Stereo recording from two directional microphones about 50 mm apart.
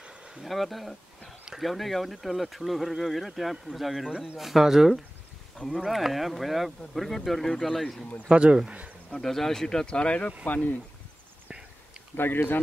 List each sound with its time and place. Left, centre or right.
0.4 s speech: centre
8.3 s speech: centre
9.1 s speech: centre
9.8 s speech: left
12.2 s speech: left